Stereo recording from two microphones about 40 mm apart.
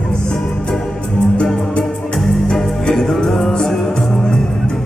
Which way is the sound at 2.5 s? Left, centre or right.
Centre.